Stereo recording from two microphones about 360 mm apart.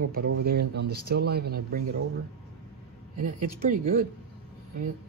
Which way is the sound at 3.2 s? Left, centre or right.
Right.